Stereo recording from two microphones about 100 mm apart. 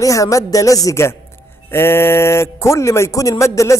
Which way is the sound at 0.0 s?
35° left (ahead or behind).